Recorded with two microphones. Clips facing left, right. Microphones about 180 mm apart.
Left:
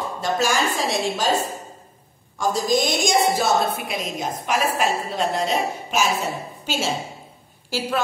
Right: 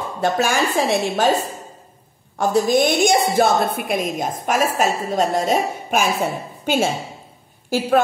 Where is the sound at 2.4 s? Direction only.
60° right (ahead or behind).